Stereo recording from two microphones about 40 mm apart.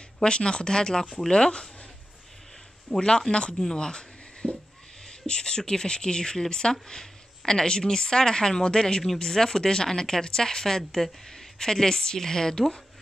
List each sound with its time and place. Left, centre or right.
0.2 s speech: left
2.9 s speech: centre
3.5 s a sound: centre
5.0 s speech: centre
9.0 s speech: centre